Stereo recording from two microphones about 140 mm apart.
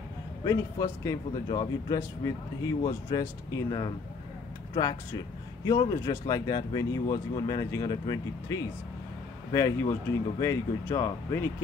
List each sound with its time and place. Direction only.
0.4 s speech: 25° left (ahead or behind)
5.6 s speech: 30° left (ahead or behind)